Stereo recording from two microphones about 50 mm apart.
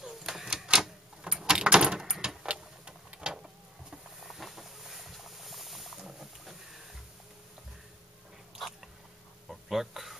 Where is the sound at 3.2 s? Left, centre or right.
Centre.